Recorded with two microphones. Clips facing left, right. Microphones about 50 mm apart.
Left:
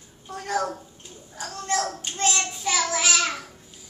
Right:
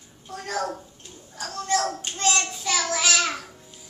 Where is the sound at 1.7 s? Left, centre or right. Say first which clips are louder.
Right 3 dB; centre.